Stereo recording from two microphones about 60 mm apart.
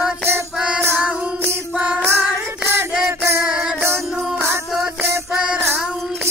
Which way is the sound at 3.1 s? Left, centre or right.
Right.